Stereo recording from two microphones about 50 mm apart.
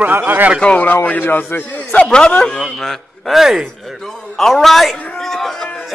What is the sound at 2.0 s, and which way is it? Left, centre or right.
Speech, centre.